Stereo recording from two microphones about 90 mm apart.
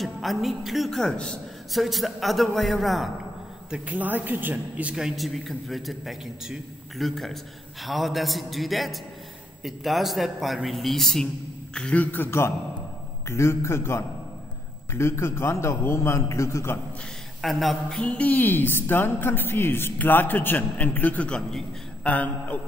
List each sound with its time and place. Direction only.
0.0 s a man's voice: centre (ahead or behind)
1.7 s a man's voice: centre (ahead or behind)
3.7 s a man's voice: 15° right (ahead or behind); by 16.8 s 30° left (ahead or behind)
17.4 s a man's voice: centre (ahead or behind)
18.0 s a woman's voice: 15° left (ahead or behind)